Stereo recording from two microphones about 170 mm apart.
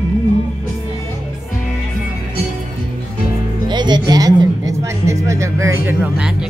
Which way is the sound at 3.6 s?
25° right (ahead or behind).